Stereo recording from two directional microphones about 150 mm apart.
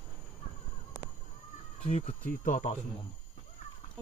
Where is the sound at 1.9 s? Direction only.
50° left (ahead or behind).